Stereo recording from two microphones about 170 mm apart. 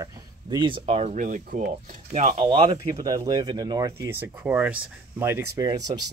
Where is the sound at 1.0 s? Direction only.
45° right (ahead or behind).